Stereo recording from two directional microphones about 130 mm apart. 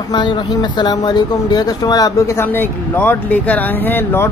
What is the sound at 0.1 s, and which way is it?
Speech, 35° left (ahead or behind).